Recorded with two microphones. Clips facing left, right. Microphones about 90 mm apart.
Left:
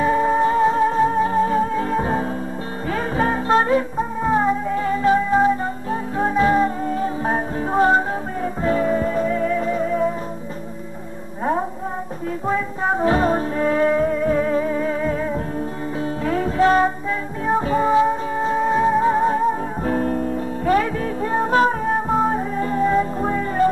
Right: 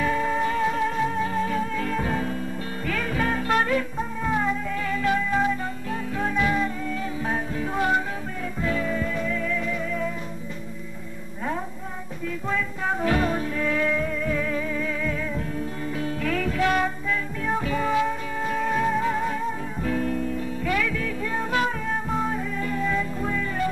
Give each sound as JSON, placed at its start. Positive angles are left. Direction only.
{"t": 0.0, "sound": "music", "side_deg": 30}
{"t": 12.4, "sound": "music", "side_deg": 30}